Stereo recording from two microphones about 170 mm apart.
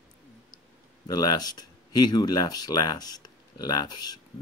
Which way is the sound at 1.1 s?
20° left (ahead or behind).